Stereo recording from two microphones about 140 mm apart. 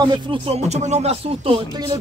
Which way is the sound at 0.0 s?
30° right (ahead or behind).